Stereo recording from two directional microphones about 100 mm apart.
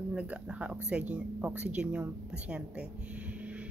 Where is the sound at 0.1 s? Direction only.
10° right (ahead or behind).